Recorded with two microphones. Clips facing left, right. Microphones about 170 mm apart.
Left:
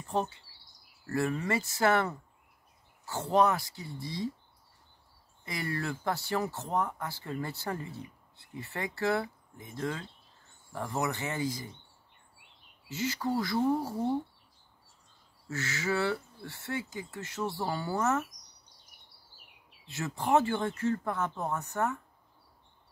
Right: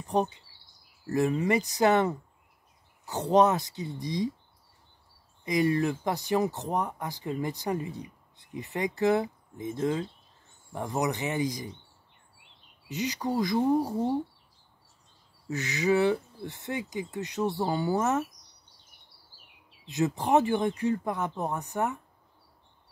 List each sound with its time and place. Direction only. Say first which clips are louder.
0.0 s speech: right 5 dB; 15° right (ahead or behind)
5.4 s speech: right 10 dB; 15° right (ahead or behind)
12.8 s speech: right 2 dB; 15° right (ahead or behind)
15.4 s speech: right 6 dB; 15° right (ahead or behind)
19.9 s speech: right 3 dB; 15° right (ahead or behind)